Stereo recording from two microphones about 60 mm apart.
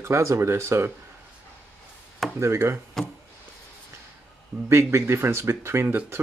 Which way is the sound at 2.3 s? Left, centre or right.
Right.